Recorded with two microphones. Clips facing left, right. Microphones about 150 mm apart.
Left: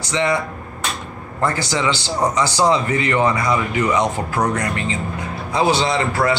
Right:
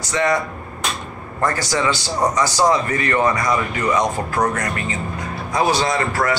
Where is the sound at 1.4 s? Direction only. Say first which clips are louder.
Even; 10° left (ahead or behind).